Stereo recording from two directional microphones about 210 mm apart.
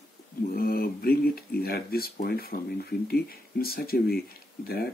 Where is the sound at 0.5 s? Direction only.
45° left (ahead or behind).